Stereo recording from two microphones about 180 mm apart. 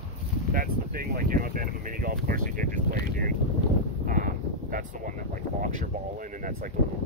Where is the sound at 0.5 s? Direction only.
55° right (ahead or behind).